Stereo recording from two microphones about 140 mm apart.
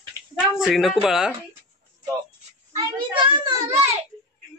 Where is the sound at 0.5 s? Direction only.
Centre (ahead or behind).